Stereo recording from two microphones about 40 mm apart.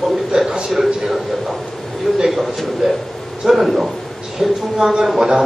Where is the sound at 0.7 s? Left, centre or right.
Centre.